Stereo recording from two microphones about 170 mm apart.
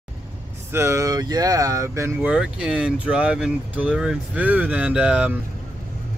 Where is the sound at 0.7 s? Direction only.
15° right (ahead or behind).